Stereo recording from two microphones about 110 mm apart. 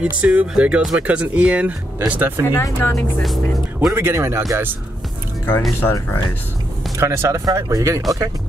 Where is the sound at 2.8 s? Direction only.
20° left (ahead or behind).